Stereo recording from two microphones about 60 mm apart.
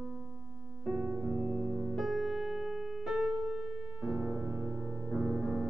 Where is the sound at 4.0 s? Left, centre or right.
Centre.